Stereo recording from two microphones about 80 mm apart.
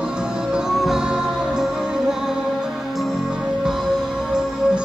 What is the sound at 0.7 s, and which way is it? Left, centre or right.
Music, centre.